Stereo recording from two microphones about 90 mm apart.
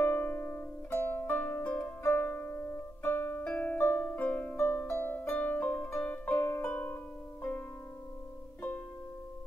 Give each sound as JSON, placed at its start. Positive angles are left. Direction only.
{"t": 0.0, "sound": "music", "side_deg": 20}